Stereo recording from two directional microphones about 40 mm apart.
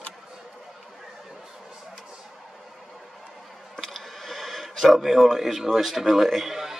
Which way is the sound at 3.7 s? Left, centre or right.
Centre.